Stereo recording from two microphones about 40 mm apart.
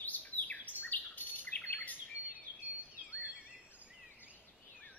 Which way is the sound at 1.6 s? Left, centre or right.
Left.